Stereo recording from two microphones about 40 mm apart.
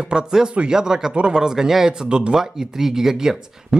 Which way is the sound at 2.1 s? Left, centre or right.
Right.